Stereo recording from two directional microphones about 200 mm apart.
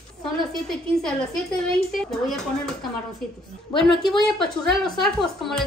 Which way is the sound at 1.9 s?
Centre (ahead or behind).